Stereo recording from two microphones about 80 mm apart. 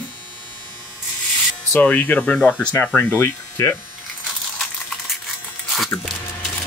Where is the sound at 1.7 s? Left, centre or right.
Left.